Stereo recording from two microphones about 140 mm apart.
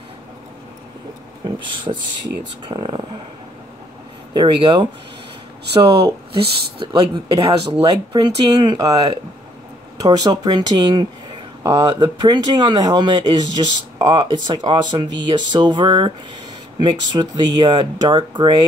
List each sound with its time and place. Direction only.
1.6 s speech: 35° right (ahead or behind)
4.3 s speech: 30° right (ahead or behind)